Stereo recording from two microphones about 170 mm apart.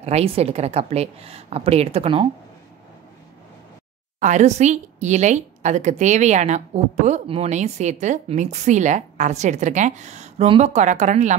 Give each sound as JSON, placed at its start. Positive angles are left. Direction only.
{"t": 0.0, "sound": "a woman's voice", "side_deg": -40}
{"t": 4.2, "sound": "speech", "side_deg": -45}